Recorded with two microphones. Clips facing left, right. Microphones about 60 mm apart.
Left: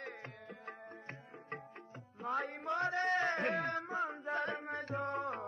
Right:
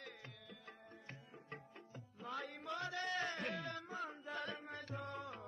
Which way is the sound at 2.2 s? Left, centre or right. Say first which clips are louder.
Left 9 dB; left.